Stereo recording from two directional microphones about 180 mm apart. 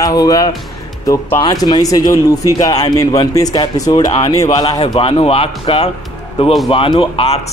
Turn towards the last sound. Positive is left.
turn(degrees=30)  # may be behind; listen again after turning